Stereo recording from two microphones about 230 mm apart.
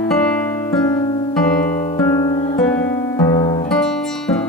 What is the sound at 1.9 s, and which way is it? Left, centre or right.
Guitar, centre.